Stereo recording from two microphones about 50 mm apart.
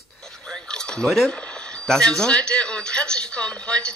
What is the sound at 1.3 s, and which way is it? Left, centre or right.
Speech, left.